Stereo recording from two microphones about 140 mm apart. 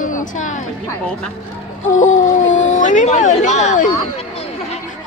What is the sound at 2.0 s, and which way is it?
Speech, 65° left (ahead or behind).